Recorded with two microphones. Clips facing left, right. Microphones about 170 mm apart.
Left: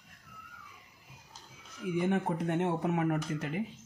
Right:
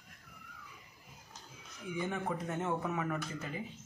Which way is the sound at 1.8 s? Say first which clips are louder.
Left 8 dB; 85° left.